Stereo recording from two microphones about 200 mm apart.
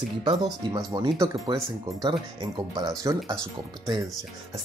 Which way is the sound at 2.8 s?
20° right (ahead or behind).